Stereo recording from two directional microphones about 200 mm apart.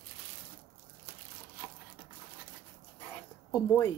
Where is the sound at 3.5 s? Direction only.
15° left (ahead or behind).